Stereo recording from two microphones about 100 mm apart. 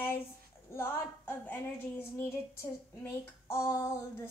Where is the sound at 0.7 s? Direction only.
20° left (ahead or behind).